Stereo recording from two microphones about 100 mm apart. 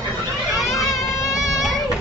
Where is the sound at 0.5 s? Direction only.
Centre (ahead or behind).